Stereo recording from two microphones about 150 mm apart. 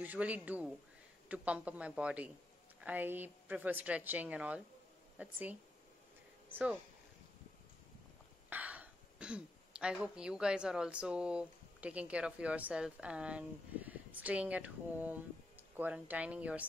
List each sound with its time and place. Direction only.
0.0 s a woman's voice: 10° right (ahead or behind)
8.5 s speech: 10° right (ahead or behind)